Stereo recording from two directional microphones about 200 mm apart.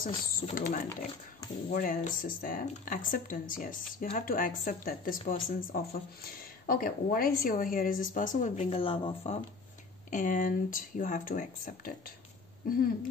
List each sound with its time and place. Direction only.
0.0 s speech: 45° left (ahead or behind); by 9.4 s 30° left (ahead or behind)
10.1 s speech: 40° left (ahead or behind)